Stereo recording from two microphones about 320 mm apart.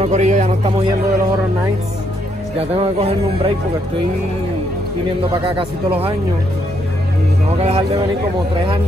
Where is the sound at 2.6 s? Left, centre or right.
Centre.